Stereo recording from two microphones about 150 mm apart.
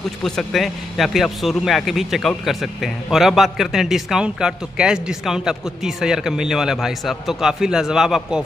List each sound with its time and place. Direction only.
0.2 s speech: centre (ahead or behind)